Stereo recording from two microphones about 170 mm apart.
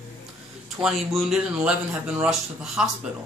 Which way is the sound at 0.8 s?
Centre (ahead or behind).